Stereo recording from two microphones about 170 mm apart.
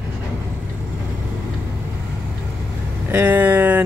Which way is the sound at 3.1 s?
10° right (ahead or behind).